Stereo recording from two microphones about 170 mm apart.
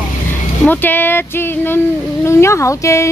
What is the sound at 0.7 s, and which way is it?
Speech, 10° left (ahead or behind).